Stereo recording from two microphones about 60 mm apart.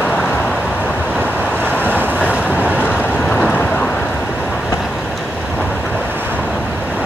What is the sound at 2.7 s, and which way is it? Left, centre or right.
Vehicle, left.